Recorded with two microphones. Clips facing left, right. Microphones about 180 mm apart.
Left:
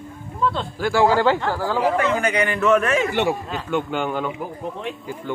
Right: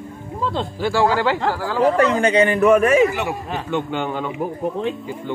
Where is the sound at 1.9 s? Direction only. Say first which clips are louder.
Right 4 dB; 25° right (ahead or behind); by 3.0 s 10° right (ahead or behind).